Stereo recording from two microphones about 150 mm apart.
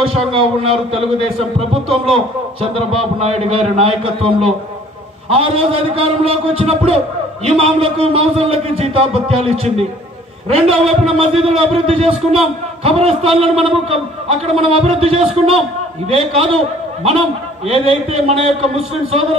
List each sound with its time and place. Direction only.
0.3 s a man's voice: 35° right (ahead or behind)
17.6 s a man's voice: 40° right (ahead or behind)